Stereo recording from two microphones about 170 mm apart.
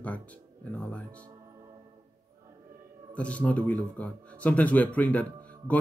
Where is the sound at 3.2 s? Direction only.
5° left (ahead or behind).